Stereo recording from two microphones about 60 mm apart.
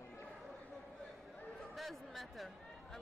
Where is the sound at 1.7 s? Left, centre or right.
Centre.